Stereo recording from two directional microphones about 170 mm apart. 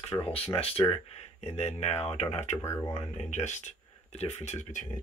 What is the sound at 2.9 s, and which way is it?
Speech, 40° left (ahead or behind).